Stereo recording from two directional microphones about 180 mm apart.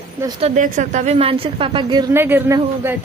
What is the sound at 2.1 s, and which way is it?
Speech, 15° right (ahead or behind).